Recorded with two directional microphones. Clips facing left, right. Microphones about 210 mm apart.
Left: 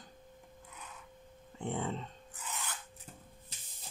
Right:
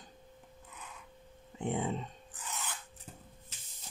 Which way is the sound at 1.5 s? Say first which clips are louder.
Right 3 dB; 15° right (ahead or behind).